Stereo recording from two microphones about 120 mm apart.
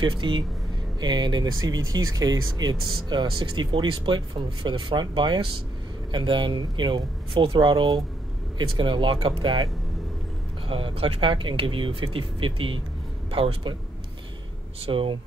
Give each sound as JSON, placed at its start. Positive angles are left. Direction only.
{"t": 0.0, "sound": "speech", "side_deg": -40}
{"t": 10.7, "sound": "speech", "side_deg": -50}
{"t": 14.9, "sound": "speech", "side_deg": -45}